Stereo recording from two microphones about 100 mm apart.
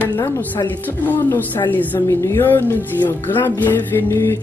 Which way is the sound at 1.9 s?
30° left (ahead or behind).